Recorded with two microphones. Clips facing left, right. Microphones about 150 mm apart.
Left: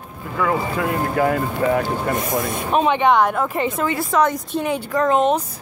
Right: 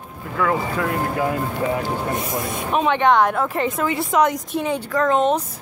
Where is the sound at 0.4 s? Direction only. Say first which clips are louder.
Even; 20° left (ahead or behind).